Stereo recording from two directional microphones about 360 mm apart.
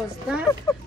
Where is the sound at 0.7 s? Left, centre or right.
Centre.